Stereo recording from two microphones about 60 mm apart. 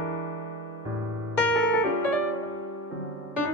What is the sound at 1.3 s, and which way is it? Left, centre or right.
Music, left.